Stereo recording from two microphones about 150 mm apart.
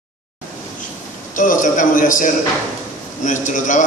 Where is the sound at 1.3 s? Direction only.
60° left (ahead or behind).